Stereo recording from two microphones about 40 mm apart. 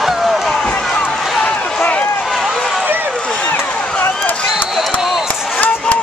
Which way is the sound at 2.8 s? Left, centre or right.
Right.